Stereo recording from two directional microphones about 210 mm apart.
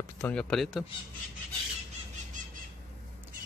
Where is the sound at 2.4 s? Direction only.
35° right (ahead or behind).